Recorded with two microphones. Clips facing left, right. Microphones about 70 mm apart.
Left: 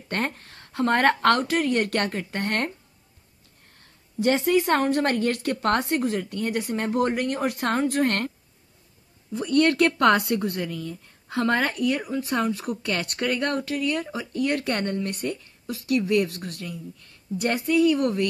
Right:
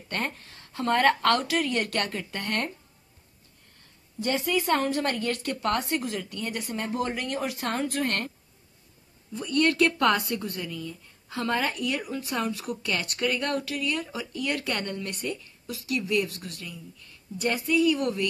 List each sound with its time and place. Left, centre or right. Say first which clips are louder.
0.1 s speech: left 4 dB; left
4.5 s speech: left 2 dB; left
9.3 s speech: left 4 dB; left